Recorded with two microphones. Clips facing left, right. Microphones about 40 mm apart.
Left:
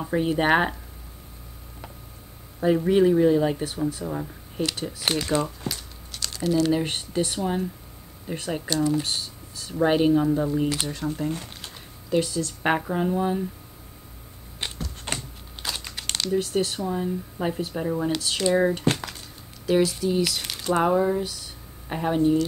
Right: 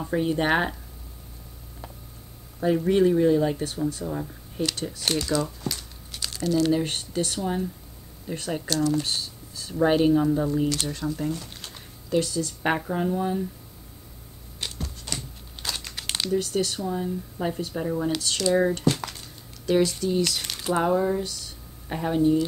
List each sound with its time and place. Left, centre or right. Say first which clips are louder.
0.0 s speech: left 1 dB; centre
2.6 s speech: left 1 dB; centre
5.2 s speech: left 1 dB; left
6.1 s a sound: even; centre
6.4 s speech: even; centre
11.5 s typing: left 1 dB; centre
12.6 s speech: left 2 dB; centre
14.6 s typewriter: left 2 dB; left
15.1 s computer keyboard: even; centre
16.3 s speech: left 1 dB; centre
18.9 s crumpling: right 1 dB; centre
20.8 s speech: left 2 dB; centre